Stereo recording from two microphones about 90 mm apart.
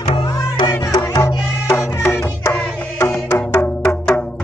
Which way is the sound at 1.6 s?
30° left (ahead or behind).